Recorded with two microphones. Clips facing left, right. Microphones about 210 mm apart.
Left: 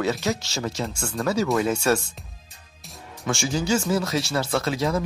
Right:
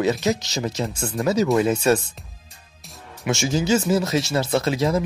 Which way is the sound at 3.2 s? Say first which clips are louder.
Right 3 dB; 20° right (ahead or behind).